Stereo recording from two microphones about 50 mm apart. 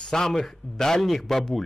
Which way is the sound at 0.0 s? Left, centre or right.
Centre.